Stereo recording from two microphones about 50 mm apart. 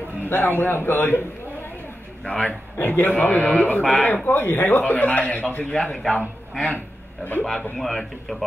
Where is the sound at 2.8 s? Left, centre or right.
Left.